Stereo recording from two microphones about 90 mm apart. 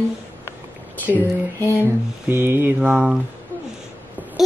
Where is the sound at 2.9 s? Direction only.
5° right (ahead or behind).